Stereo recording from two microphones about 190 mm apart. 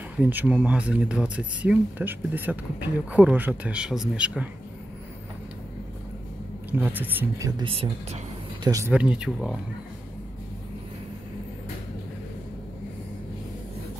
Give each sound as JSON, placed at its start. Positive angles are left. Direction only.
{"t": 0.2, "sound": "speech", "side_deg": -10}
{"t": 6.8, "sound": "speech", "side_deg": -10}
{"t": 8.6, "sound": "speech", "side_deg": -15}
{"t": 8.9, "sound": "speech", "side_deg": -5}